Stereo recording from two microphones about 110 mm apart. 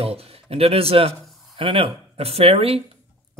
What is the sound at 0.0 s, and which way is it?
Speech, 65° right (ahead or behind).